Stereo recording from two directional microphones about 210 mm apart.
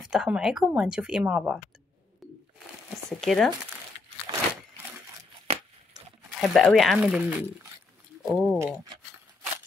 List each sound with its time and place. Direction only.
0.0 s a woman's voice: 5° right (ahead or behind)
3.1 s a woman's voice: centre (ahead or behind)
4.3 s crunch: 20° right (ahead or behind)
5.5 s a sound: 35° right (ahead or behind)
6.4 s a woman's voice: centre (ahead or behind)